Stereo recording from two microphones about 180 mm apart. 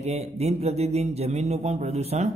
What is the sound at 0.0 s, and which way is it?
A man's voice, 35° right (ahead or behind).